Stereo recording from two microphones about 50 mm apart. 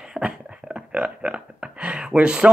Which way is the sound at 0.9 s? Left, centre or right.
Right.